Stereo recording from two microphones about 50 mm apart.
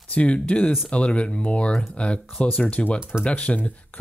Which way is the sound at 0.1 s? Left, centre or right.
Left.